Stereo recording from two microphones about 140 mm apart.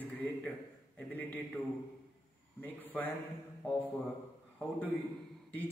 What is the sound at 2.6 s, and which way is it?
Speech, 10° left (ahead or behind).